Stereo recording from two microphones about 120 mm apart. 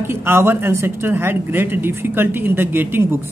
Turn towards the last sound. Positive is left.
turn(degrees=-20)  # may be behind; listen again after turning